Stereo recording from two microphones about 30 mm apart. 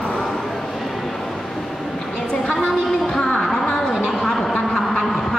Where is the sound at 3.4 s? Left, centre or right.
Centre.